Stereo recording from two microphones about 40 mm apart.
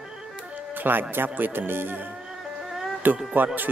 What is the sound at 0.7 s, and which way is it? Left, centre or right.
Speech, right.